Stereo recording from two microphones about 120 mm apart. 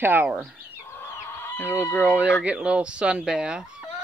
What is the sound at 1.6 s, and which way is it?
Speech, 15° right (ahead or behind).